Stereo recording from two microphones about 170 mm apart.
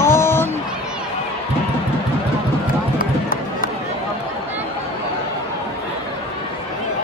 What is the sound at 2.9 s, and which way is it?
Run, 55° left (ahead or behind).